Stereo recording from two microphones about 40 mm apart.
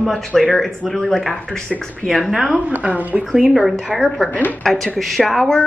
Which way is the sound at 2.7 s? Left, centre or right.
Right.